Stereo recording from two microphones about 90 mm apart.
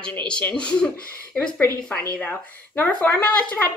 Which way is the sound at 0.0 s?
10° left (ahead or behind).